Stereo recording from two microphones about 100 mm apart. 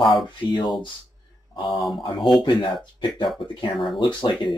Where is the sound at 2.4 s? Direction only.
50° left (ahead or behind).